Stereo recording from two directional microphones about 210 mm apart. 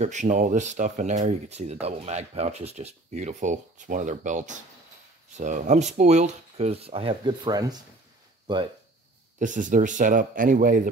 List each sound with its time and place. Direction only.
0.0 s speech: 35° right (ahead or behind); by 7.8 s 20° right (ahead or behind)
9.4 s speech: 35° right (ahead or behind)